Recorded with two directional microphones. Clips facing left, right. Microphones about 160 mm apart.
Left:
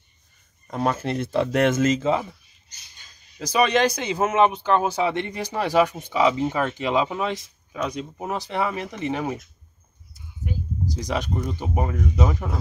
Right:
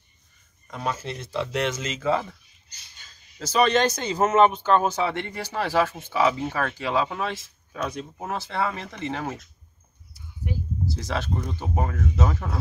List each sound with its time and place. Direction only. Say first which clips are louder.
0.7 s speech: left 6 dB; 40° left (ahead or behind)
0.9 s speech: left 7 dB; 60° left (ahead or behind)
2.0 s speech: left 2 dB; 20° left (ahead or behind)
10.9 s speech: left 3 dB; 15° left (ahead or behind)